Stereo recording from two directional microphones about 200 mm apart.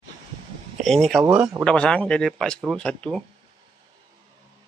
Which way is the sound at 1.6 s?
5° left (ahead or behind).